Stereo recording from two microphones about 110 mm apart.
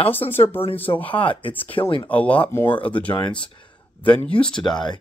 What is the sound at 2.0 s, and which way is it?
Speech, 15° left (ahead or behind).